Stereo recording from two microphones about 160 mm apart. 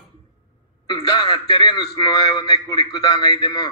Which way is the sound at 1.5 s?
30° left (ahead or behind).